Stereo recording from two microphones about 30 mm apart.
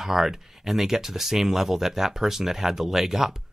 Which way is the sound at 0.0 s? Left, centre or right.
Centre.